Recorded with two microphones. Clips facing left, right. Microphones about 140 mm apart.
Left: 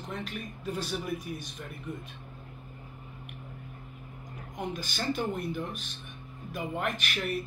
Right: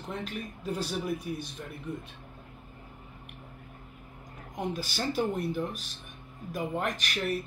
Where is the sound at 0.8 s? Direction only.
35° right (ahead or behind).